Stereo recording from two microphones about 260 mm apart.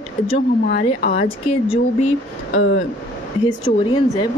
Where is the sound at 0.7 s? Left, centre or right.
Left.